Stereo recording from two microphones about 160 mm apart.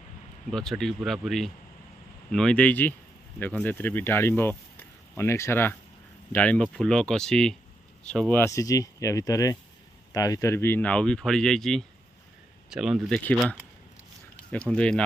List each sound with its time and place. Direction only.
0.5 s speech: 5° left (ahead or behind)